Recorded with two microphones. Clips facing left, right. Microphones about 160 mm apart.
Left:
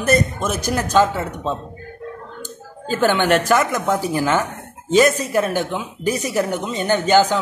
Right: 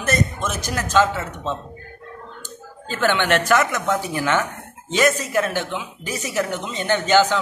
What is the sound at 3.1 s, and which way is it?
A man's voice, 40° left (ahead or behind).